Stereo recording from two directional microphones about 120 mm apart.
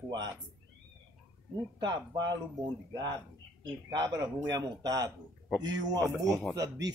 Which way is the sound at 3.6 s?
35° right (ahead or behind).